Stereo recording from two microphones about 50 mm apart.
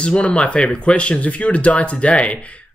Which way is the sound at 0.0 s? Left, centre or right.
Left.